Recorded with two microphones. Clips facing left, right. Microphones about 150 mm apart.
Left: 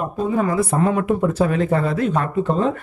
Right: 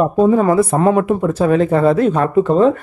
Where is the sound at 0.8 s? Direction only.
30° right (ahead or behind).